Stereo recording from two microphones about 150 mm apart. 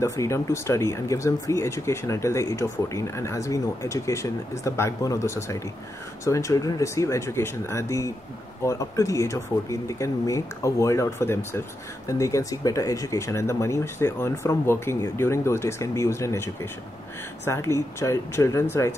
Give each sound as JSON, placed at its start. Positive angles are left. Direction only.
{"t": 0.0, "sound": "speech", "side_deg": 20}
{"t": 17.5, "sound": "speech", "side_deg": 20}